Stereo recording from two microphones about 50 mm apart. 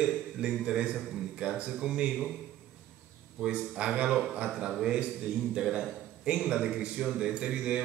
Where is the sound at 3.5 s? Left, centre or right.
Right.